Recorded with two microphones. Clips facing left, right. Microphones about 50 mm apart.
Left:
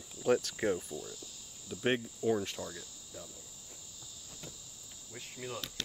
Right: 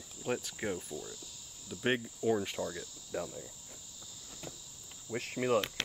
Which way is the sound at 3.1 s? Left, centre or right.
Right.